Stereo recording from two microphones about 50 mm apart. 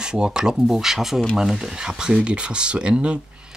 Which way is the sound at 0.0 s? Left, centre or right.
Centre.